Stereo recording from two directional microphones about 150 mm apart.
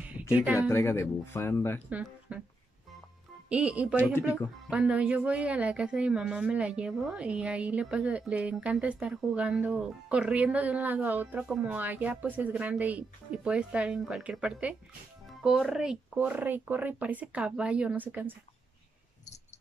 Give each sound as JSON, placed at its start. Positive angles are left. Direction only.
{"t": 0.6, "sound": "speech", "side_deg": 20}
{"t": 1.9, "sound": "speech", "side_deg": -10}
{"t": 3.4, "sound": "speech", "side_deg": -5}
{"t": 4.1, "sound": "speech", "side_deg": 15}
{"t": 4.6, "sound": "speech", "side_deg": -5}